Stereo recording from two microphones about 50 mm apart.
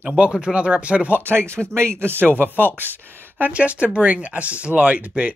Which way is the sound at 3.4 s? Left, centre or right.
Right.